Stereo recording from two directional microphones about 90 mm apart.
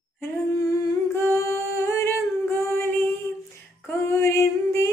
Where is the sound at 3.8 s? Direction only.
30° left (ahead or behind).